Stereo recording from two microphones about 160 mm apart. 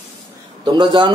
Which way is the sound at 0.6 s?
30° right (ahead or behind).